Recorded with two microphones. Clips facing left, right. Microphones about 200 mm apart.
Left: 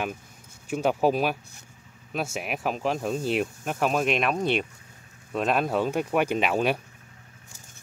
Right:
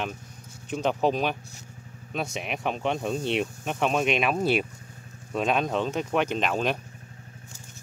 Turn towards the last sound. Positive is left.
turn(degrees=10)  # may be behind; listen again after turning